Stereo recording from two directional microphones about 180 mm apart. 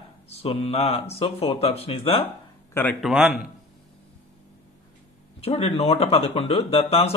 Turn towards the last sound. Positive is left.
turn(degrees=35)  # may be behind; listen again after turning